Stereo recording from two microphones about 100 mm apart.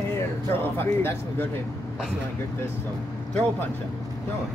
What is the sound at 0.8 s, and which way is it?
Speech, 20° left (ahead or behind).